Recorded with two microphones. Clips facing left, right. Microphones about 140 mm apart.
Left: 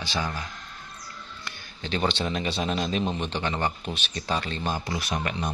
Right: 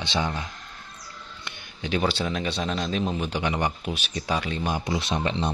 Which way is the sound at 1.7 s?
10° right (ahead or behind).